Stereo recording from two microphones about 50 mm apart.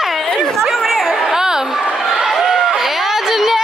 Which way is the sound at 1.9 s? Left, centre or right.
Centre.